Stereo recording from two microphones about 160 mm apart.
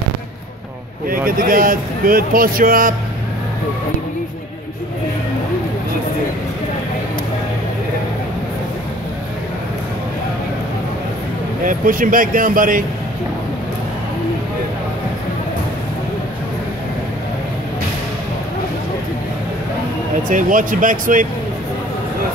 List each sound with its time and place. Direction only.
1.0 s speech: 60° right (ahead or behind)
11.6 s speech: 60° right (ahead or behind)
20.2 s speech: 55° right (ahead or behind)